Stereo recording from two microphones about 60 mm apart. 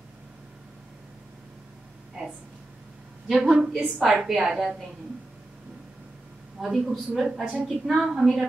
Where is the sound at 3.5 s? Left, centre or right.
Centre.